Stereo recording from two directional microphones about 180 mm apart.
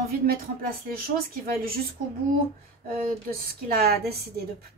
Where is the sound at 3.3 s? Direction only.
55° right (ahead or behind).